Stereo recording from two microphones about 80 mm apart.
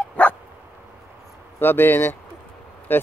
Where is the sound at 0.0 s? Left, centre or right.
Centre.